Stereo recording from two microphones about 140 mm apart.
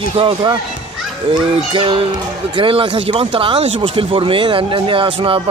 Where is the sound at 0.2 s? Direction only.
35° right (ahead or behind).